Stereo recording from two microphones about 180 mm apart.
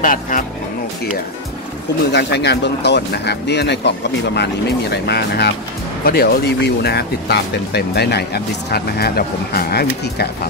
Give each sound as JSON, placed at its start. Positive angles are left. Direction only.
{"t": 0.0, "sound": "speech", "side_deg": 50}
{"t": 2.1, "sound": "speech", "side_deg": 70}